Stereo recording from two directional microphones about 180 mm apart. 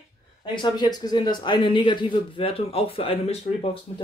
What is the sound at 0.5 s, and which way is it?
Speech, 25° left (ahead or behind).